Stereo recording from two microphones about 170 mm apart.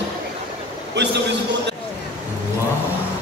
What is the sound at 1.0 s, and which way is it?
Speech, 90° right.